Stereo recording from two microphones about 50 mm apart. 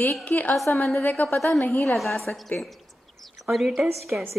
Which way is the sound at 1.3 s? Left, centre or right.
Centre.